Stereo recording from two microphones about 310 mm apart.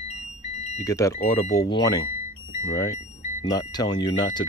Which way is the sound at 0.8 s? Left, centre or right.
Centre.